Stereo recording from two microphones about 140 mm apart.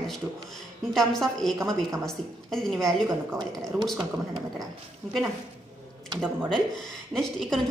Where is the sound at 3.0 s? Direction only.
30° right (ahead or behind).